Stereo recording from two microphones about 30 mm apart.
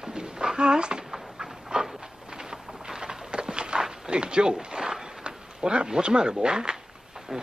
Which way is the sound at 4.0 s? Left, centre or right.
Right.